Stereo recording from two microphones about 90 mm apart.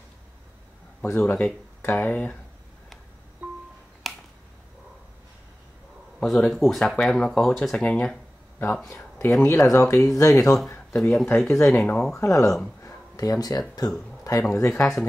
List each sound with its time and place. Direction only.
1.0 s speech: 20° left (ahead or behind)
1.8 s speech: 35° left (ahead or behind)
2.0 s speech: 15° left (ahead or behind)
3.4 s music: 15° right (ahead or behind)
4.1 s finger snapping: centre (ahead or behind)
6.1 s speech: 5° left (ahead or behind)
8.8 s speech: 30° left (ahead or behind)
11.0 s speech: 5° left (ahead or behind)
11.2 s speech: 30° left (ahead or behind)
11.7 s speech: 20° left (ahead or behind)
12.2 s speech: 35° left (ahead or behind)
14.5 s speech: 35° left (ahead or behind)
14.8 s speech: 5° left (ahead or behind)